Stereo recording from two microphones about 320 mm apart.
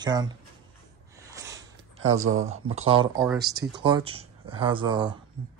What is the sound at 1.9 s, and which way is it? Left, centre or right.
Speech, right.